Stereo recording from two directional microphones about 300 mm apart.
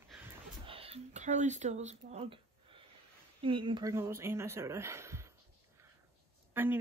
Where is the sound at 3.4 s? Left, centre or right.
Centre.